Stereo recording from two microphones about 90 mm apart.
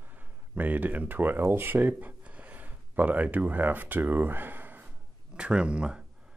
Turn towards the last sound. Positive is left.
turn(degrees=-10)  # may be behind; listen again after turning